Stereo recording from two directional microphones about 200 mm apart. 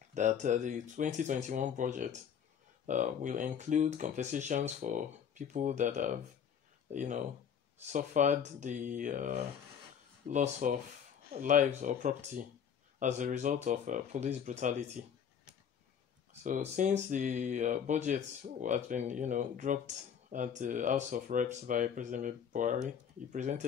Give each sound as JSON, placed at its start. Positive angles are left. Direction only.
{"t": 0.1, "sound": "speech", "side_deg": -35}
{"t": 16.4, "sound": "speech", "side_deg": -40}